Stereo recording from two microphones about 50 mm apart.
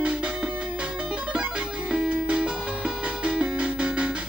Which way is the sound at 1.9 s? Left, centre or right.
Centre.